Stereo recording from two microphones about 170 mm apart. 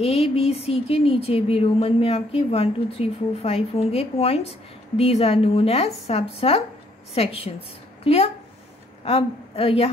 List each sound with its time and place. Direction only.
0.0 s a woman's voice: 35° left (ahead or behind)